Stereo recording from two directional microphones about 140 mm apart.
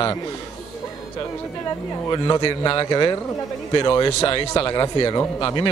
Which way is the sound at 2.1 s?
30° left (ahead or behind).